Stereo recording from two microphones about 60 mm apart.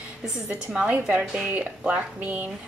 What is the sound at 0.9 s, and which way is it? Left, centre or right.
A woman's voice, right.